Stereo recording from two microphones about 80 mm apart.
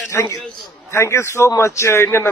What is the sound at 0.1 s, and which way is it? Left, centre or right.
A man's voice, left.